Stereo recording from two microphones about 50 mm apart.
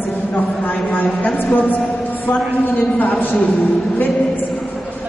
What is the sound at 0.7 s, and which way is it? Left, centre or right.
A woman's voice, left.